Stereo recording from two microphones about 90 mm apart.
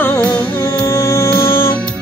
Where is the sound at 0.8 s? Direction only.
35° left (ahead or behind).